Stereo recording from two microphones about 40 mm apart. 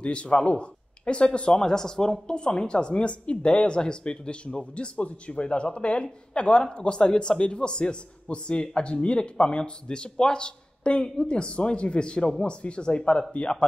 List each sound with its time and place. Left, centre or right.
0.0 s a man's voice: left